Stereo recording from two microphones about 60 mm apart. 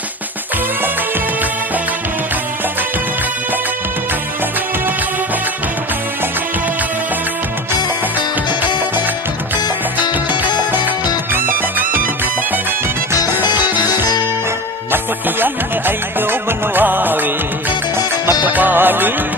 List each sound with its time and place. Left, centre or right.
13.3 s music: right
18.4 s music: right